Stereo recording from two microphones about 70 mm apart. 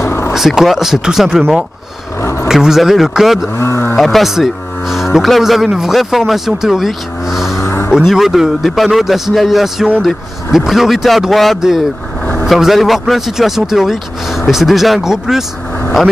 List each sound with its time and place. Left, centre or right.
0.0 s vehicle: left
0.3 s speech: centre
2.4 s speech: centre
3.5 s speech: left
3.9 s speech: centre
7.6 s a sound: left
8.1 s speech: centre